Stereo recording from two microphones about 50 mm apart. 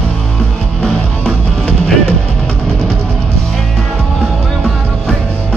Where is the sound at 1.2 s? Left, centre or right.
Centre.